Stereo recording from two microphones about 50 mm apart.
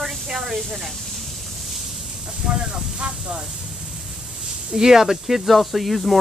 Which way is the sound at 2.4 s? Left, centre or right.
Centre.